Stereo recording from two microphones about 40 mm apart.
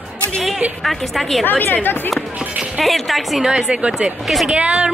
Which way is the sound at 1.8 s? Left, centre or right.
Left.